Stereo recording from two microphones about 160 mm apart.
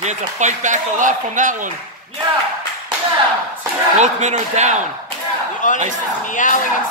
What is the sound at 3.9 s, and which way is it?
Speech, 45° right (ahead or behind).